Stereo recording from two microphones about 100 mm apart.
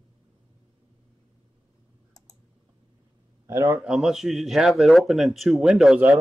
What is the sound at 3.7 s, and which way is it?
Speech, 5° right (ahead or behind).